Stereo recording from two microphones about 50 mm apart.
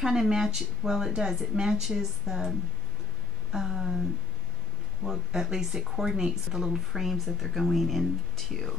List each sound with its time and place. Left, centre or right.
0.0 s a woman's voice: centre
3.5 s speech: centre
5.0 s speech: centre